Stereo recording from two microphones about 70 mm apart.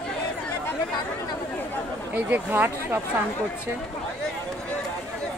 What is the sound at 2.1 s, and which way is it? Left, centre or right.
Speech, right.